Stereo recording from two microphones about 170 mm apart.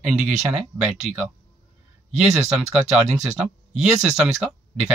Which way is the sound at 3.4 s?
5° right (ahead or behind).